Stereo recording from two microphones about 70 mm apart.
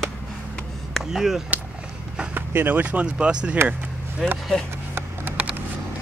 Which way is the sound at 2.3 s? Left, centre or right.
Right.